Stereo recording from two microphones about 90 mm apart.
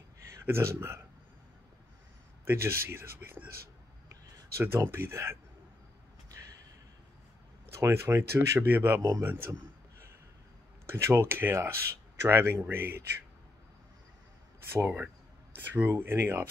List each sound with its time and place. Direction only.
0.3 s speech: 30° right (ahead or behind)
2.4 s speech: 25° right (ahead or behind)
4.6 s speech: 25° right (ahead or behind)
7.8 s speech: 30° right (ahead or behind)
9.0 s speech: 40° right (ahead or behind)
9.3 s speech: 25° right (ahead or behind)
10.9 s speech: 30° right (ahead or behind)
14.7 s speech: 25° right (ahead or behind)